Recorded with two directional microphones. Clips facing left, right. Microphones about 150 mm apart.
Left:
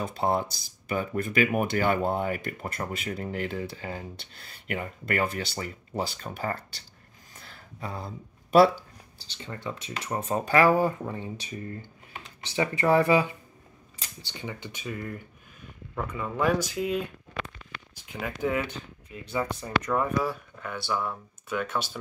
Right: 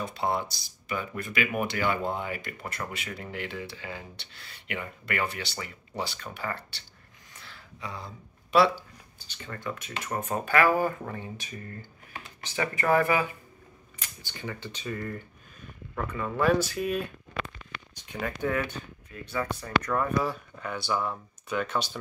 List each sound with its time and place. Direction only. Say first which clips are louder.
0.2 s speech: left 3 dB; 45° left (ahead or behind)
7.3 s a sound: left 2 dB; 40° left (ahead or behind)
9.4 s speech: even; 25° left (ahead or behind)
20.2 s speech: even; centre (ahead or behind)